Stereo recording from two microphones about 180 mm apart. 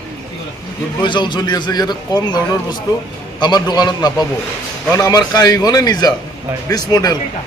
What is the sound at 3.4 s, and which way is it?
A man's voice, 25° left (ahead or behind).